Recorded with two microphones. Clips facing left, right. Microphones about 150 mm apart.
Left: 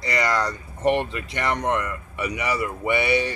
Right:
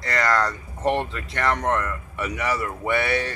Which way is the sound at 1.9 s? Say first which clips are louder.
Even; centre (ahead or behind).